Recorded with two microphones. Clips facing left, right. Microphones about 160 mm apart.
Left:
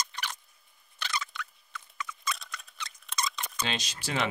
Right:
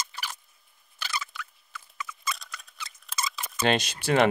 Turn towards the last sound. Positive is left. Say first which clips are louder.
# right 10 dB
turn(degrees=-60)  # may be behind; listen again after turning